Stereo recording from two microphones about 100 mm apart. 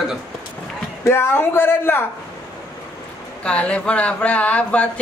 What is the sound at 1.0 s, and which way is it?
Speech, 25° left (ahead or behind).